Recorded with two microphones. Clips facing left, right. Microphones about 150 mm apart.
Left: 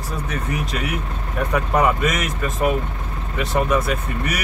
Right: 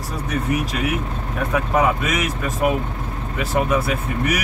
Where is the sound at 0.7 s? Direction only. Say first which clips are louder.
Right 3 dB; centre (ahead or behind).